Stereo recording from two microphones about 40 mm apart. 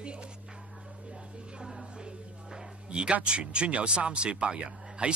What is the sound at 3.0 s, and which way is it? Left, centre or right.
Speech, right.